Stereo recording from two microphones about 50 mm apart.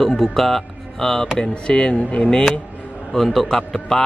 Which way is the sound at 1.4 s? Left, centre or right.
Centre.